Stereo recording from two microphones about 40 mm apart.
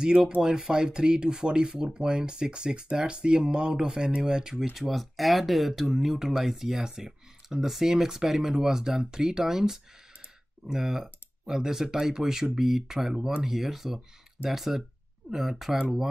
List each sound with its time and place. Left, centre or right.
0.0 s speech: right
4.7 s speech: centre